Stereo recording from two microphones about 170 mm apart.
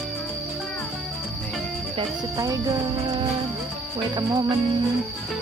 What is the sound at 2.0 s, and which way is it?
Music, 20° right (ahead or behind).